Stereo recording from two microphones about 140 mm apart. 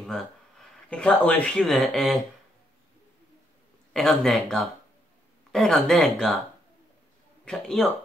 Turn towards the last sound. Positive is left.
turn(degrees=5)  # may be behind; listen again after turning